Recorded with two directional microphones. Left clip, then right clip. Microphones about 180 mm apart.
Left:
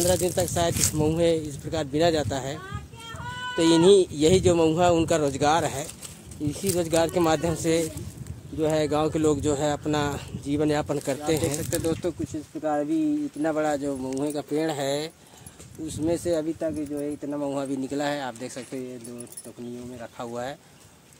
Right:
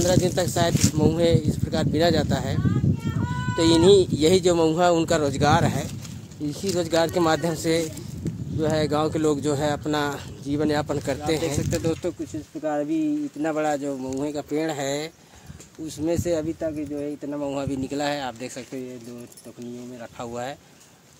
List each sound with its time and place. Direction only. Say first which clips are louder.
0.1 s speech: right 2 dB; 15° right (ahead or behind)
11.5 s speech: right 2 dB; centre (ahead or behind)
11.8 s speech: right 1 dB; 15° right (ahead or behind)
16.0 s speech: right 1 dB; 15° right (ahead or behind)
20.0 s speech: right 1 dB; 15° right (ahead or behind)